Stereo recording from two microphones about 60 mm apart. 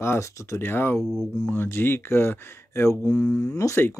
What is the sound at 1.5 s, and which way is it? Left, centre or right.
Speech, left.